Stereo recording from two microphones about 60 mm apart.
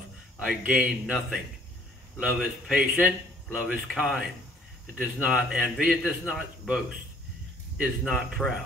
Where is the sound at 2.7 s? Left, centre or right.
Right.